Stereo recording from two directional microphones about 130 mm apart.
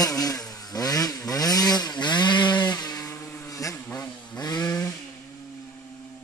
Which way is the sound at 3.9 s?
30° left (ahead or behind).